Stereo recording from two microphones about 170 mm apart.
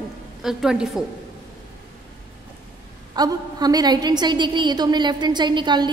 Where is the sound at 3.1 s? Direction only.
25° right (ahead or behind).